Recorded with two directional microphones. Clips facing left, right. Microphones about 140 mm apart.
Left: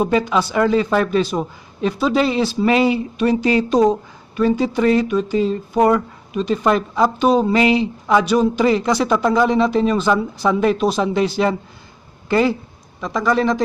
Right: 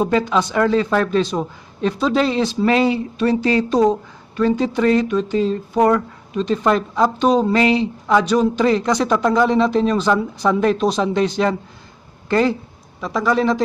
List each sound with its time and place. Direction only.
0.0 s a man's voice: 5° left (ahead or behind)